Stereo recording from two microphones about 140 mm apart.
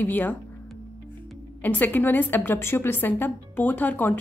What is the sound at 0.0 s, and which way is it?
Speech, 15° left (ahead or behind).